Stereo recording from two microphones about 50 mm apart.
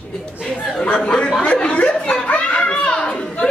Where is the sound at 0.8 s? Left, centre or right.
Centre.